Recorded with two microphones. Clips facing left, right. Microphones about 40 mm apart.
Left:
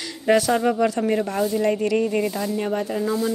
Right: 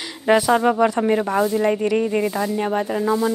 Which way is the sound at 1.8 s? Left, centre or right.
Centre.